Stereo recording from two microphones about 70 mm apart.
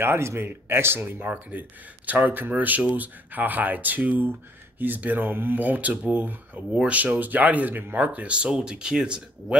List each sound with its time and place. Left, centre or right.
0.0 s speech: right; by 9.6 s centre